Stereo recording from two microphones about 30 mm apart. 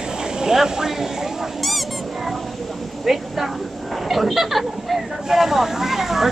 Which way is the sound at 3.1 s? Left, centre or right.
Centre.